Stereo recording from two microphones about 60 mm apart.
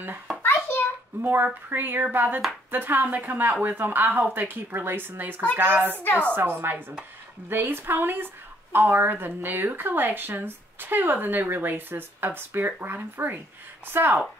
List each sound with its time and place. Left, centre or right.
1.2 s a woman's voice: right
6.0 s a woman's voice: left
6.3 s a woman's voice: right